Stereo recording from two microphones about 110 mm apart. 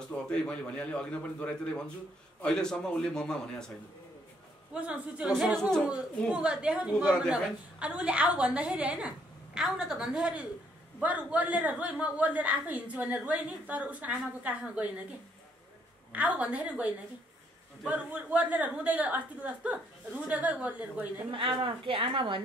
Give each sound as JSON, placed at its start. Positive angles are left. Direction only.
{"t": 0.1, "sound": "a man's voice", "side_deg": 10}
{"t": 4.7, "sound": "a man's voice", "side_deg": -10}
{"t": 6.3, "sound": "a man's voice", "side_deg": -10}
{"t": 16.1, "sound": "a man's voice", "side_deg": -10}
{"t": 21.3, "sound": "speech", "side_deg": -50}